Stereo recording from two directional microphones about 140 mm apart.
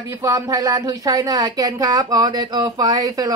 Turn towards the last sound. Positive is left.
turn(degrees=-25)  # may be behind; listen again after turning